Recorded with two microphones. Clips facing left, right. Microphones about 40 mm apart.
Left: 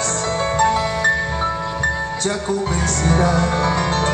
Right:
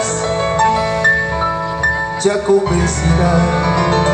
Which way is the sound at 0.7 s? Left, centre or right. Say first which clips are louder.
Right 4 dB; centre.